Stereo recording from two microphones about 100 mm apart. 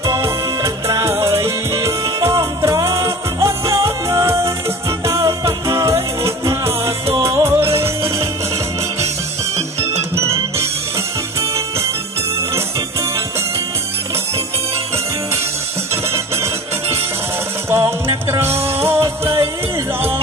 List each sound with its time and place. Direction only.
0.0 s music: 35° right (ahead or behind)
9.6 s music: 90° right
10.1 s music: 25° right (ahead or behind)
15.9 s music: 25° right (ahead or behind)
17.6 s music: 25° right (ahead or behind)